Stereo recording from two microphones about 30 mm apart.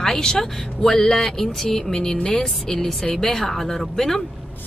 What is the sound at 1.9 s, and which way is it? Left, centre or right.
Speech, left.